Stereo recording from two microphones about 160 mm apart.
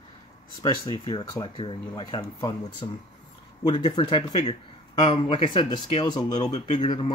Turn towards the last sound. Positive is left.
turn(degrees=30)  # may be behind; listen again after turning